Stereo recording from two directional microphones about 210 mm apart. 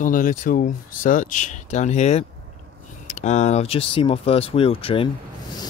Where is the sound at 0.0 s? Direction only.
40° left (ahead or behind).